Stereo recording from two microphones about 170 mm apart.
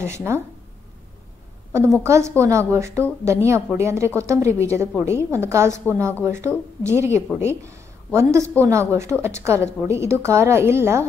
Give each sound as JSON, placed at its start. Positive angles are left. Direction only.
{"t": 0.0, "sound": "a woman's voice", "side_deg": -15}
{"t": 2.0, "sound": "a woman's voice", "side_deg": -15}